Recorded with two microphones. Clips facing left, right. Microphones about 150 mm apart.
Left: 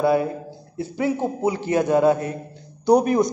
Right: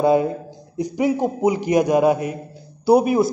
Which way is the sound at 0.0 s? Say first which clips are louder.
Right 3 dB; 20° right (ahead or behind).